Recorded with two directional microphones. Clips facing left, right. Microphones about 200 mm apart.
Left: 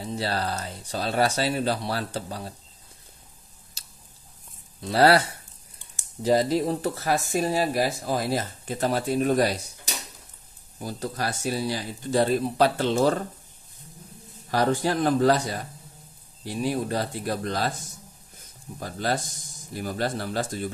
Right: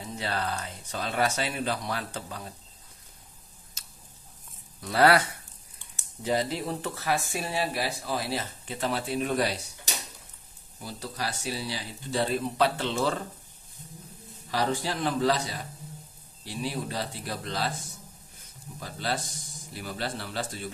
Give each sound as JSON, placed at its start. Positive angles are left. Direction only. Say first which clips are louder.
{"t": 0.0, "sound": "speech", "louder": "left 4 dB", "side_deg": 35}
{"t": 3.8, "sound": "squish", "louder": "even", "side_deg": 35}
{"t": 4.7, "sound": "speech", "louder": "left 3 dB", "side_deg": 30}
{"t": 10.8, "sound": "speech", "louder": "left 5 dB", "side_deg": 45}
{"t": 14.5, "sound": "speech", "louder": "left 5 dB", "side_deg": 50}
{"t": 18.8, "sound": "speech", "louder": "left 5 dB", "side_deg": 45}